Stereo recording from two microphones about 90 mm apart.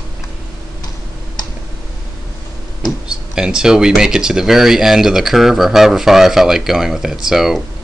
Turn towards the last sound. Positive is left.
turn(degrees=-5)  # may be behind; listen again after turning